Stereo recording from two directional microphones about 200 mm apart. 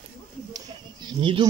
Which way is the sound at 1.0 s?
25° right (ahead or behind).